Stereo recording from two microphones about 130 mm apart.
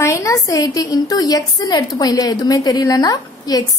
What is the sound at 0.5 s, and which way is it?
A woman's voice, 25° left (ahead or behind).